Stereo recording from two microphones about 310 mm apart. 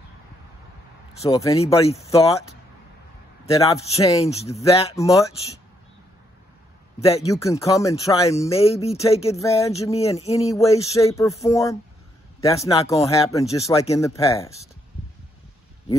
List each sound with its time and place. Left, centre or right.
1.1 s speech: centre
3.5 s speech: centre
7.0 s speech: centre